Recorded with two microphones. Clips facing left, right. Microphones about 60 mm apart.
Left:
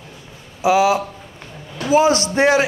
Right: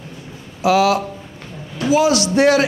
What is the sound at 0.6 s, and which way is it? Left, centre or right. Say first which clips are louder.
Speech: even; centre.